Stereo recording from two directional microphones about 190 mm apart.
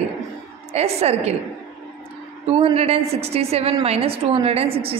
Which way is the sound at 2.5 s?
30° right (ahead or behind).